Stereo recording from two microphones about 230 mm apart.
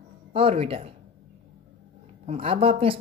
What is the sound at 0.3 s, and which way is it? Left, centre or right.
Speech, right.